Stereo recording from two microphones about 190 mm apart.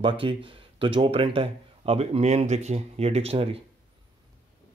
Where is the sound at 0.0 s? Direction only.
25° right (ahead or behind).